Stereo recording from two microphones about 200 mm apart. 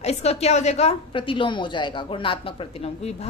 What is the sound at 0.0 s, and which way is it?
A woman's voice, 30° left (ahead or behind).